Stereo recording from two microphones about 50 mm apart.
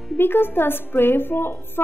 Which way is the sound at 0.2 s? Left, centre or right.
Left.